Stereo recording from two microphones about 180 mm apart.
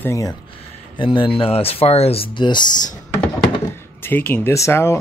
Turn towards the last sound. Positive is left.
turn(degrees=15)  # may be behind; listen again after turning